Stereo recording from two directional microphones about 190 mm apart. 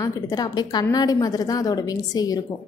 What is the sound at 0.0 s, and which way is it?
A woman's voice, 20° left (ahead or behind).